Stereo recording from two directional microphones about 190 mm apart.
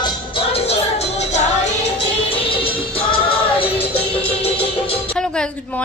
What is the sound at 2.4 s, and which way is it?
Music, 30° left (ahead or behind).